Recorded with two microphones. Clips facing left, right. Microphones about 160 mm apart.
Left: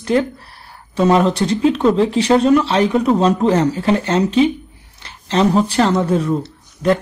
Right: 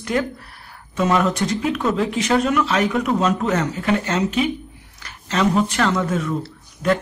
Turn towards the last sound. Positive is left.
turn(degrees=30)  # may be behind; listen again after turning